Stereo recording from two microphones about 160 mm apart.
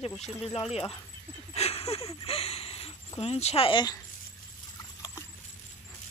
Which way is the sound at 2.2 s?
40° left (ahead or behind).